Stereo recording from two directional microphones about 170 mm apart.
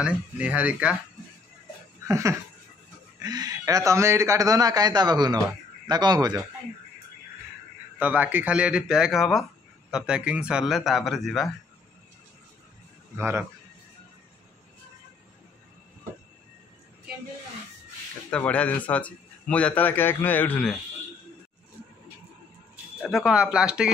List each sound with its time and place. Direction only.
0.0 s speech: 5° right (ahead or behind)
2.0 s a sound: 15° right (ahead or behind)
3.2 s speech: 25° right (ahead or behind)
8.0 s speech: 10° right (ahead or behind)
13.1 s speech: 10° right (ahead or behind)
18.3 s a man's voice: 10° left (ahead or behind)
23.0 s speech: 5° right (ahead or behind)